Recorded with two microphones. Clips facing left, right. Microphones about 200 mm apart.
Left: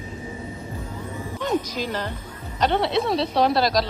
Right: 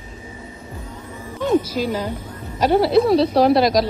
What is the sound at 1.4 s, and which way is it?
A woman's voice, 10° right (ahead or behind).